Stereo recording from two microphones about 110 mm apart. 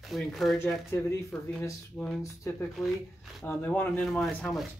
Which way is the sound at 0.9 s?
25° left (ahead or behind).